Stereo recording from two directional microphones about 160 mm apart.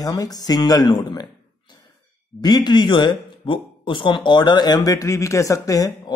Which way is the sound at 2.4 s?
25° left (ahead or behind).